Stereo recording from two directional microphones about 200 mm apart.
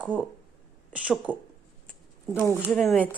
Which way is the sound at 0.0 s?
5° right (ahead or behind).